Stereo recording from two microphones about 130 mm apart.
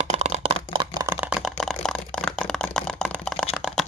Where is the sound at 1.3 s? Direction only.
Centre (ahead or behind).